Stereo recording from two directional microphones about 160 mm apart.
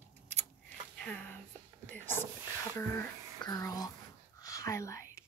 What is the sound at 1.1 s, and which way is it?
Whispering, 10° left (ahead or behind).